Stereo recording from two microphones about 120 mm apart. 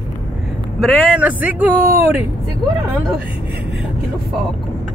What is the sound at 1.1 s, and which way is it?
Speech, 10° right (ahead or behind).